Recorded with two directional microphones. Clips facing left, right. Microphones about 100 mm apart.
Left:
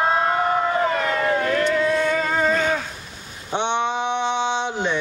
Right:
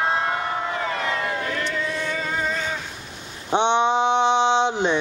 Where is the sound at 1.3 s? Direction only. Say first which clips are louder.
Left 7 dB; 50° left (ahead or behind).